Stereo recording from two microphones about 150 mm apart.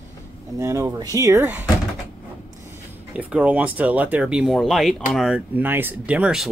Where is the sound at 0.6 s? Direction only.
20° right (ahead or behind).